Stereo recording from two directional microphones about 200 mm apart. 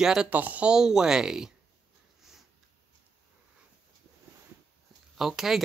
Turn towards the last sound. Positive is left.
turn(degrees=0)  # may be behind; listen again after turning